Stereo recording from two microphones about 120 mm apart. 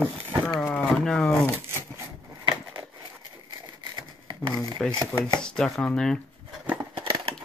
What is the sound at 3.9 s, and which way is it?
Crumpling, 40° right (ahead or behind).